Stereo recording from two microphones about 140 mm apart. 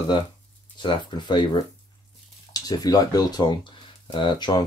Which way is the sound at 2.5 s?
25° left (ahead or behind).